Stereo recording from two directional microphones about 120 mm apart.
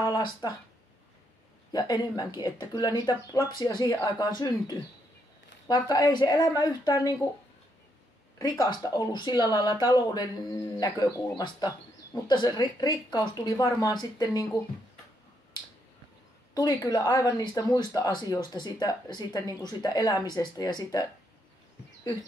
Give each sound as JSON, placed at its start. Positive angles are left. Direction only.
{"t": 0.0, "sound": "speech", "side_deg": 35}
{"t": 1.7, "sound": "speech", "side_deg": 35}
{"t": 8.4, "sound": "speech", "side_deg": 30}
{"t": 16.5, "sound": "speech", "side_deg": 30}